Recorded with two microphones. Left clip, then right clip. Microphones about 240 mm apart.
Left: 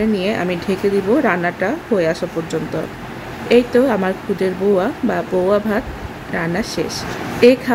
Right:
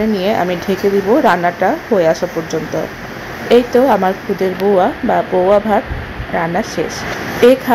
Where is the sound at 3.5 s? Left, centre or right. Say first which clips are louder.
Right 3 dB; centre.